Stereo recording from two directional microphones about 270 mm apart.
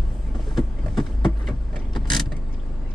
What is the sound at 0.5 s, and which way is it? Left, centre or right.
Vehicle, centre.